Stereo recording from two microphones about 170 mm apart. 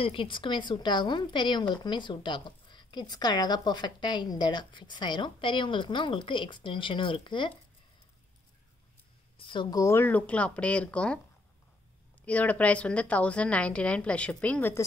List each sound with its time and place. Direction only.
0.0 s a woman's voice: 30° left (ahead or behind)
9.4 s a woman's voice: 30° left (ahead or behind); by 11.1 s 5° left (ahead or behind)
12.3 s a woman's voice: 10° left (ahead or behind)